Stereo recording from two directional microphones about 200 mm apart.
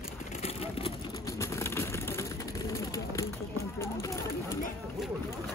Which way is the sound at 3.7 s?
15° left (ahead or behind).